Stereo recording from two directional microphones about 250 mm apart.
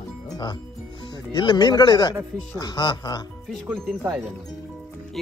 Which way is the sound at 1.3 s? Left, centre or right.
Centre.